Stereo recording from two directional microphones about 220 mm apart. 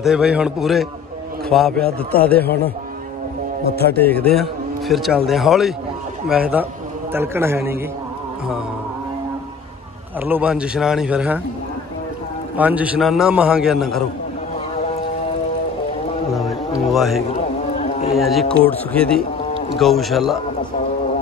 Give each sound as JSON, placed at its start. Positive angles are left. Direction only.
{"t": 0.0, "sound": "a man's voice", "side_deg": 0}
{"t": 3.9, "sound": "a man's voice", "side_deg": 5}
{"t": 10.2, "sound": "a man's voice", "side_deg": -5}
{"t": 12.5, "sound": "a man's voice", "side_deg": -5}
{"t": 17.7, "sound": "a sound", "side_deg": 30}
{"t": 18.1, "sound": "a man's voice", "side_deg": 0}